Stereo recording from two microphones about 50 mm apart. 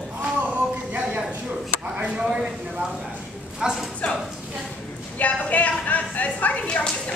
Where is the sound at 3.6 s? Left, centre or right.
Centre.